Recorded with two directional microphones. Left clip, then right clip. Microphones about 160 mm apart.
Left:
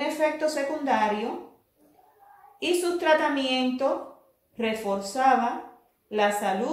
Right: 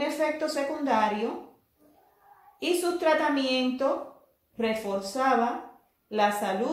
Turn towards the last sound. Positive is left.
turn(degrees=15)  # may be behind; listen again after turning